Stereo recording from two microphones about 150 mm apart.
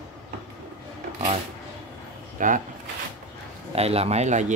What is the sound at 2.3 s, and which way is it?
Speech, 60° right (ahead or behind).